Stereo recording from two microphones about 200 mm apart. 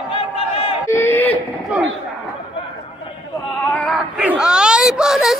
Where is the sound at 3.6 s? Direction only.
5° left (ahead or behind).